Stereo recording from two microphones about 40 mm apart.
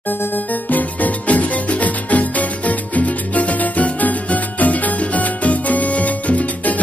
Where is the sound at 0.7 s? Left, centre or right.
Left.